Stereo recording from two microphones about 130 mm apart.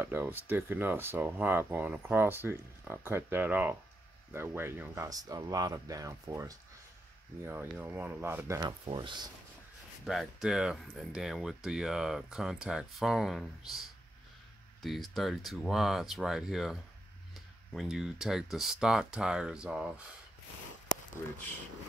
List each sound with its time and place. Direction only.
0.0 s speech: 15° right (ahead or behind)
7.8 s speech: 15° right (ahead or behind)
8.8 s speech: 40° right (ahead or behind)
10.0 s speech: 5° right (ahead or behind)